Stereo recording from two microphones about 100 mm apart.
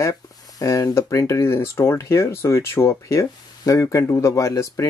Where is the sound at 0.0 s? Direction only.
30° left (ahead or behind).